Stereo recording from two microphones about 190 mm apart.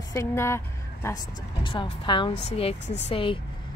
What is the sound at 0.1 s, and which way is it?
Speech, 15° left (ahead or behind).